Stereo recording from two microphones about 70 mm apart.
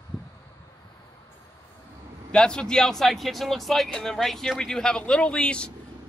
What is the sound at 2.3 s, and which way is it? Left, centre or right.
A man's voice, centre.